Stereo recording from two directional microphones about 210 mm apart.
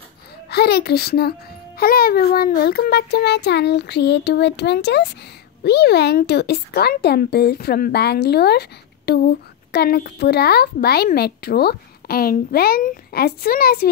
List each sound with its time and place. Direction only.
0.5 s speech: 50° left (ahead or behind)